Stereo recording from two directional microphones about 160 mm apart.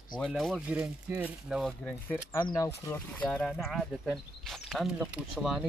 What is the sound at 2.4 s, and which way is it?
Speech, 20° left (ahead or behind).